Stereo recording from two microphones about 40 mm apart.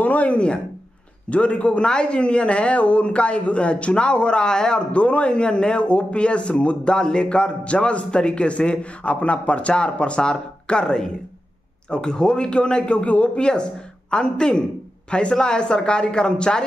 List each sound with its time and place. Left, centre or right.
0.0 s speech: left; by 4.8 s centre
4.9 s a man's voice: left